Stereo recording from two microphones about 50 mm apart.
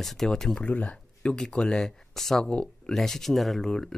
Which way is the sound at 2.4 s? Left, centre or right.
Centre.